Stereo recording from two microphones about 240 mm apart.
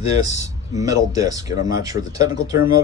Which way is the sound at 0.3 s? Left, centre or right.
Centre.